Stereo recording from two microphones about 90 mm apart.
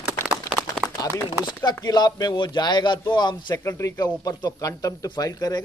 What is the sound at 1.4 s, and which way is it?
A man's voice, 50° left (ahead or behind).